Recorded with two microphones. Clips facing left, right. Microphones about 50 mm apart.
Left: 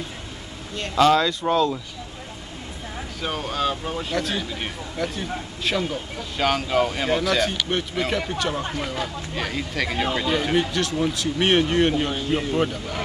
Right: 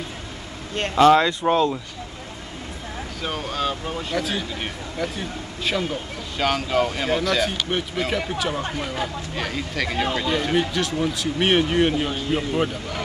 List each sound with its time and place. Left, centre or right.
0.9 s speech: right
3.2 s speech: centre